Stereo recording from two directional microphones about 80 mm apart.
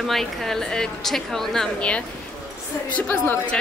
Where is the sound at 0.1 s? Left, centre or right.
Centre.